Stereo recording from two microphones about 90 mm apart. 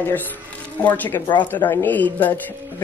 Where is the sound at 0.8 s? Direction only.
20° left (ahead or behind).